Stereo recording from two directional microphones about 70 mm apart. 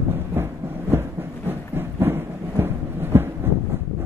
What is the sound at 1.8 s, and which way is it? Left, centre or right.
Thunder, right.